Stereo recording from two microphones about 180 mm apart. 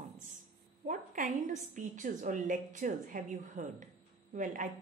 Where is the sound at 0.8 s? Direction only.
45° right (ahead or behind).